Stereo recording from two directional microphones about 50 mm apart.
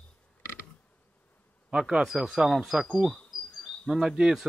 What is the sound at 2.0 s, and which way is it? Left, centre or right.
Speech, centre.